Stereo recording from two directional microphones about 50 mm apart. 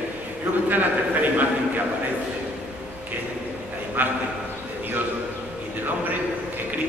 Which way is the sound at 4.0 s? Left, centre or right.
Right.